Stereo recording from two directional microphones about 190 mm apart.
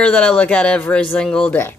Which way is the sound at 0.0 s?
5° left (ahead or behind).